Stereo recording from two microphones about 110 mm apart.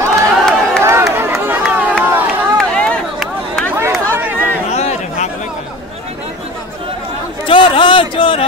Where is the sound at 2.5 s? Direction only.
10° left (ahead or behind).